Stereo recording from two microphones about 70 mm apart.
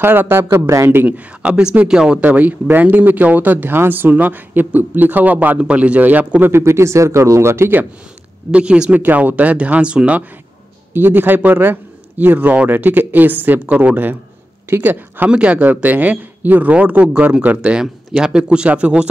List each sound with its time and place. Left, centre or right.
0.0 s speech: right
0.5 s a man's voice: right
1.0 s speech: centre
6.5 s speech: right
8.5 s speech: centre
10.9 s speech: right
15.2 s speech: centre